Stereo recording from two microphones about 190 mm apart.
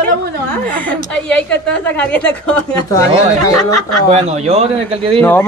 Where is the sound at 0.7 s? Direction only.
10° left (ahead or behind).